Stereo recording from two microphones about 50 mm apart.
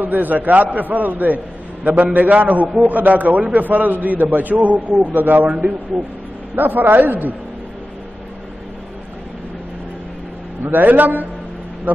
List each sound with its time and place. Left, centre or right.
0.0 s a man's voice: right
10.6 s a man's voice: right